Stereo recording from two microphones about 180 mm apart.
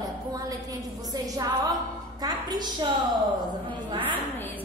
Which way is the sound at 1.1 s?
20° right (ahead or behind).